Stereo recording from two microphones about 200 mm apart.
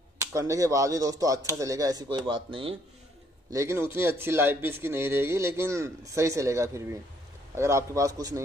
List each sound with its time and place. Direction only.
0.3 s speech: 15° right (ahead or behind)
3.5 s speech: 15° right (ahead or behind)